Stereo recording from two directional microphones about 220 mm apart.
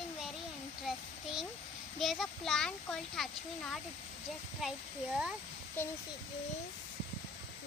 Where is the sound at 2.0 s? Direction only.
Centre (ahead or behind).